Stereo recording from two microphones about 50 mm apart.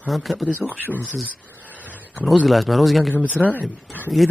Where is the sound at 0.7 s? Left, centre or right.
Right.